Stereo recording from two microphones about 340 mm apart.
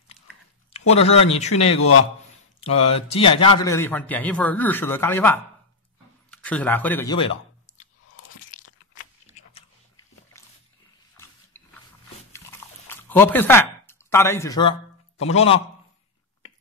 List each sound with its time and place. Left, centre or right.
0.7 s a man's voice: centre
7.7 s biting: left
8.5 s crunch: left
10.3 s a sound: centre
11.5 s a sound: centre
12.3 s chewing: centre
15.3 s speech: centre